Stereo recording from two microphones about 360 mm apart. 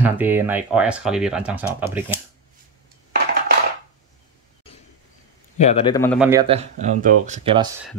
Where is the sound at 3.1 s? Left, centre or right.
Right.